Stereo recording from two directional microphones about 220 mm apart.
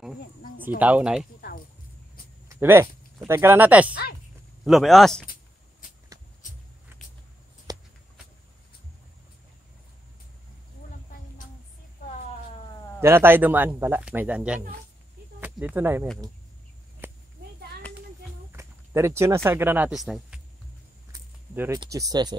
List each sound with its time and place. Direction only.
0.7 s speech: 5° right (ahead or behind)
2.4 s speech: 10° right (ahead or behind)
3.9 s speech: 45° left (ahead or behind)
4.6 s speech: centre (ahead or behind)
6.9 s vehicle: 10° right (ahead or behind)
7.7 s a sound: 20° right (ahead or behind)
13.0 s speech: 10° right (ahead or behind)
17.0 s a sound: 10° right (ahead or behind)
18.5 s speech: 10° right (ahead or behind)
21.1 s a sound: 15° right (ahead or behind)